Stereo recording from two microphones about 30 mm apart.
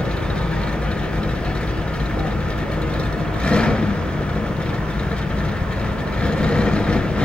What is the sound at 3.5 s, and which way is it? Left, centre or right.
Vehicle, left.